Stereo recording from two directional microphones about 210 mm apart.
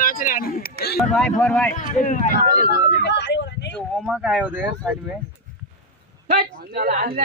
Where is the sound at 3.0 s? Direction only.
55° left (ahead or behind).